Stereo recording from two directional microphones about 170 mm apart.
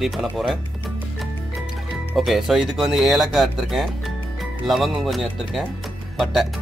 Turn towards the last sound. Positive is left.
turn(degrees=0)  # may be behind; listen again after turning